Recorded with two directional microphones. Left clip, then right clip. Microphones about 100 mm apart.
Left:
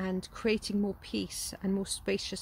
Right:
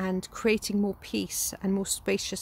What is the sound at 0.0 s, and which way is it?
Speech, 45° right (ahead or behind).